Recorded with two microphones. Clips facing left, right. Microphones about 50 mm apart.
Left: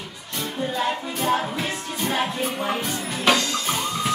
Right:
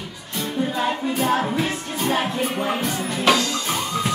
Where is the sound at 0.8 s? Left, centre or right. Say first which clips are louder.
Right 2 dB; centre.